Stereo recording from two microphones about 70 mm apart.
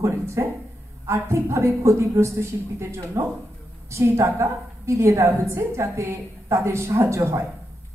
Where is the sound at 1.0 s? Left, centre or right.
Right.